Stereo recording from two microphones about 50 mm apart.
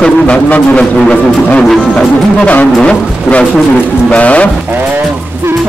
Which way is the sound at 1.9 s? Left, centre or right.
Left.